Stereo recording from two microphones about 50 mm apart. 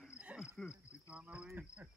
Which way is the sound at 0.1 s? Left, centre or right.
Right.